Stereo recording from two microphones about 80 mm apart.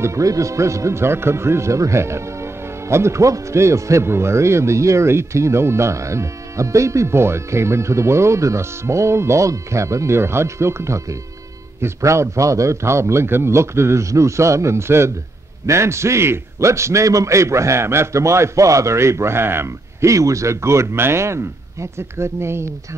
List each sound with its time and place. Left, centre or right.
0.0 s speech: right